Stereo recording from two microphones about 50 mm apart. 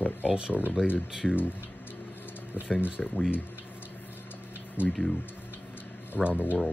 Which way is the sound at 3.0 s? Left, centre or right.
Centre.